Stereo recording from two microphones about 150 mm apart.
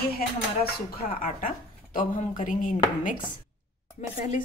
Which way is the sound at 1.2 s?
65° left (ahead or behind).